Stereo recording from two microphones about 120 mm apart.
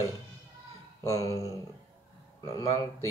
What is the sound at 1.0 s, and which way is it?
Speech, 30° left (ahead or behind).